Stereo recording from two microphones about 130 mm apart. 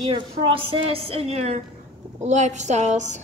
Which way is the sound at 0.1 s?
45° right (ahead or behind).